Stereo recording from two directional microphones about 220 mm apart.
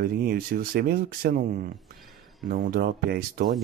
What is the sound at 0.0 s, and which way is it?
Speech, 40° right (ahead or behind).